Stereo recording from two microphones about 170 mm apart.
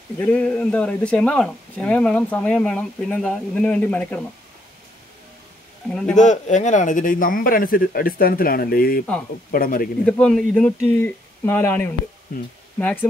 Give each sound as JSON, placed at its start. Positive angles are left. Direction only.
{"t": 0.2, "sound": "a man's voice", "side_deg": 10}
{"t": 5.9, "sound": "speech", "side_deg": 5}
{"t": 6.1, "sound": "speech", "side_deg": 45}
{"t": 10.0, "sound": "a man's voice", "side_deg": 5}